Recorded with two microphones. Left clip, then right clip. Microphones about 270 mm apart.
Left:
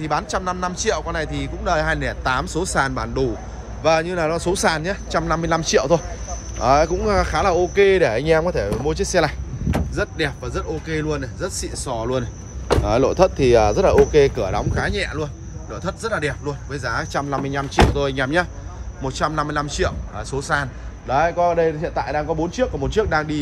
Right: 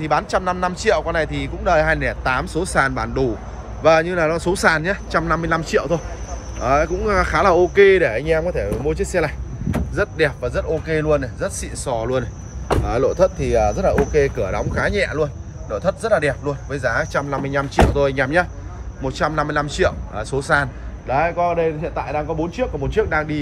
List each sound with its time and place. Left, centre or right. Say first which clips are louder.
0.0 s speech: right 3 dB; centre
12.8 s speech: even; centre
21.8 s a man's voice: left 1 dB; left
22.3 s speech: left 1 dB; centre